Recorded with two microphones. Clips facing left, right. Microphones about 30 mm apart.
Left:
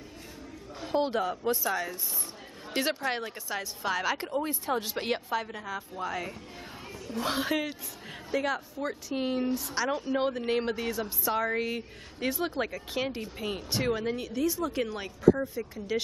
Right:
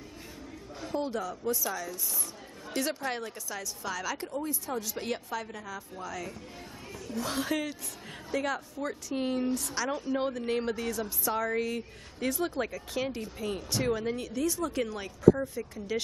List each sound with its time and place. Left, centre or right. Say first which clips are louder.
0.9 s a woman's voice: left 5 dB; left
3.4 s a woman's voice: left 4 dB; left
8.3 s a woman's voice: left 2 dB; centre